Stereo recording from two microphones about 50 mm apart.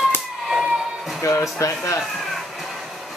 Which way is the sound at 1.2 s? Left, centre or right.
Left.